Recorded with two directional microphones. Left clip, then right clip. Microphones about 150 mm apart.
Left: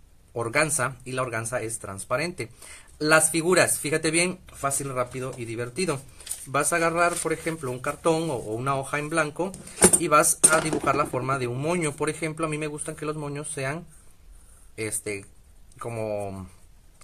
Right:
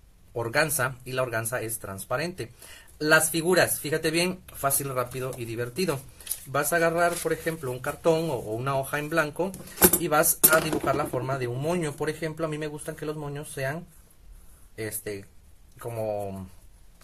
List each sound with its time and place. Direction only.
0.3 s speech: 20° left (ahead or behind)
4.6 s a man's voice: 10° left (ahead or behind); by 13.7 s 35° left (ahead or behind)
15.8 s a man's voice: 35° left (ahead or behind)